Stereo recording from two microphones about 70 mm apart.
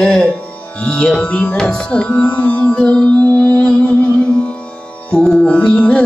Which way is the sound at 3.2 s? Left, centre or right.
Left.